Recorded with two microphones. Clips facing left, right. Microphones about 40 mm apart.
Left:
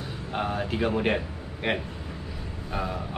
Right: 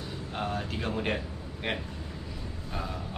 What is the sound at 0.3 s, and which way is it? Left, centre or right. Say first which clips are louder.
A man's voice: left 5 dB; centre.